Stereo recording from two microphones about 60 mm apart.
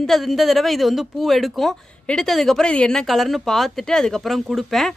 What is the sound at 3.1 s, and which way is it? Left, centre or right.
Speech, centre.